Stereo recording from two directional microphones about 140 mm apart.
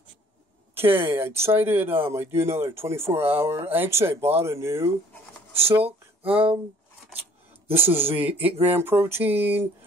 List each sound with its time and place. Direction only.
0.7 s speech: 15° right (ahead or behind)
5.7 s speech: 45° right (ahead or behind)
8.1 s speech: 10° right (ahead or behind)